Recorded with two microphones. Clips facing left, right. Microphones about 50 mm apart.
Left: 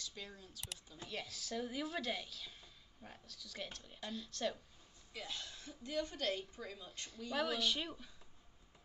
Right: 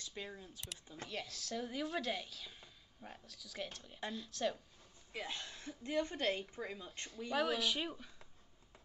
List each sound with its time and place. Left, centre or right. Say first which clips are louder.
0.0 s speech: right 3 dB; right
1.0 s a woman's voice: right 1 dB; centre
5.1 s a woman's voice: right 3 dB; right
7.3 s speech: right 2 dB; centre